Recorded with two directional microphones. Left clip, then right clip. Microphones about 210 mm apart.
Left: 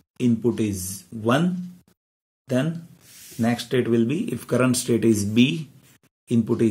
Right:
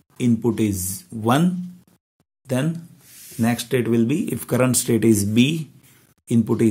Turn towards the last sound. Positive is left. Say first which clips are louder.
# right 2 dB
turn(degrees=-35)  # may be behind; listen again after turning